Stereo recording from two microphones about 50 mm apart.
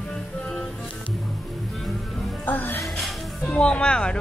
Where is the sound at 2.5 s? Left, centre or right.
Left.